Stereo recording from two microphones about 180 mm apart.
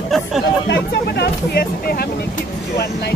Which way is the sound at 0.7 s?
65° left (ahead or behind).